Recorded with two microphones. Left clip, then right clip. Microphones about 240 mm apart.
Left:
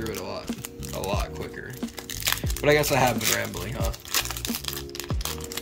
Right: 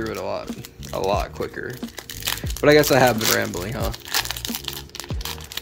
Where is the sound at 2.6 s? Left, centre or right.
Centre.